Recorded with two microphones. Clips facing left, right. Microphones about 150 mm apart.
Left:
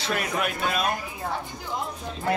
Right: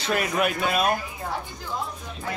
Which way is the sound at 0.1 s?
5° right (ahead or behind).